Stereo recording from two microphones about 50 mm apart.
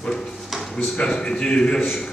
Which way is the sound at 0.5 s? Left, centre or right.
Centre.